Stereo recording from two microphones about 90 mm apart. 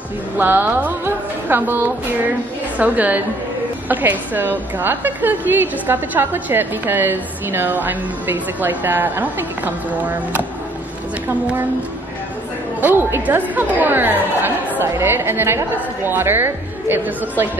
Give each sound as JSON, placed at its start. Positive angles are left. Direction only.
{"t": 0.4, "sound": "a woman's voice", "side_deg": -20}
{"t": 12.8, "sound": "a woman's voice", "side_deg": -25}